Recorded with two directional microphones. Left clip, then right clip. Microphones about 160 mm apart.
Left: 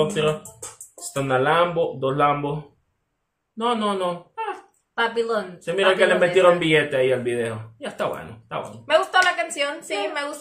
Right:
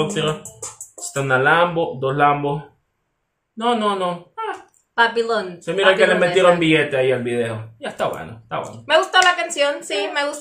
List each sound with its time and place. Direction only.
0.0 s a man's voice: centre (ahead or behind)
3.5 s speech: 5° right (ahead or behind)
4.9 s a woman's voice: 30° right (ahead or behind)
5.8 s a man's voice: centre (ahead or behind)
8.8 s a woman's voice: 35° right (ahead or behind)